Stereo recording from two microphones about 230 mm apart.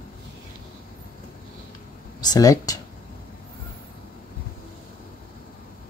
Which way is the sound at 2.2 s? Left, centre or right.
Centre.